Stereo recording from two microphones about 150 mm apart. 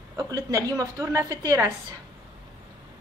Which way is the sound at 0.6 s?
20° right (ahead or behind).